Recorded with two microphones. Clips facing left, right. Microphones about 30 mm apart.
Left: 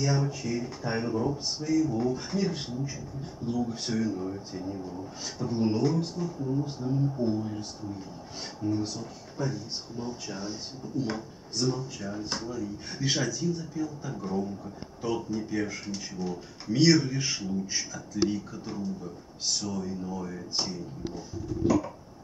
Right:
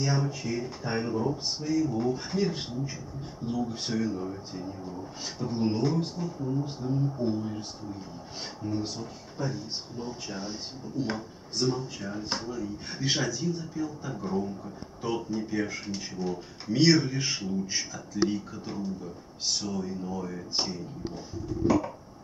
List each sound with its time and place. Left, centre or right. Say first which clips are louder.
0.0 s speech: left 1 dB; centre
8.6 s speech: left 3 dB; centre